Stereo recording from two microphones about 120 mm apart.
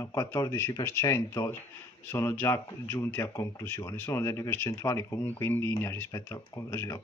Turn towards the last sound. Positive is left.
turn(degrees=20)  # may be behind; listen again after turning